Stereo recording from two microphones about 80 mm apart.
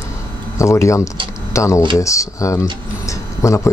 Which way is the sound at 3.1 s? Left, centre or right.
Left.